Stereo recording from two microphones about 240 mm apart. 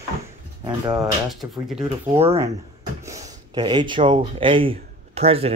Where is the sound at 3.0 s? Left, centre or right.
Centre.